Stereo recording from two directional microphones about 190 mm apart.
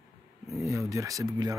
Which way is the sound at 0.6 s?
15° right (ahead or behind).